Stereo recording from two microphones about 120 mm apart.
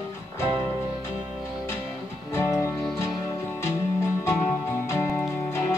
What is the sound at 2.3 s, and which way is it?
Music, 25° left (ahead or behind).